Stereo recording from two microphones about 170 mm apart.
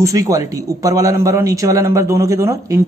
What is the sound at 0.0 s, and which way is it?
A man's voice, 20° right (ahead or behind).